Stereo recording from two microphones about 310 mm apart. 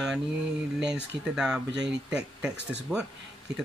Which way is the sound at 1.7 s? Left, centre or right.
Right.